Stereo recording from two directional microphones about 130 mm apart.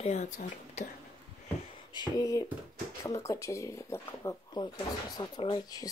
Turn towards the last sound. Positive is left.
turn(degrees=30)  # may be behind; listen again after turning